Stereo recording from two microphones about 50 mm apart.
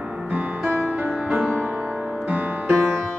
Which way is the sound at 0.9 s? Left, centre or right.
Right.